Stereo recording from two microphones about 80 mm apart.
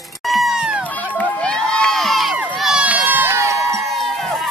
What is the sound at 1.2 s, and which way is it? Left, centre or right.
Crowd, centre.